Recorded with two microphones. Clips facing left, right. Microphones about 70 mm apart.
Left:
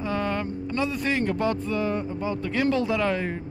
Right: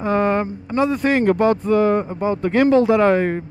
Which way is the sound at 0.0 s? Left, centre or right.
Right.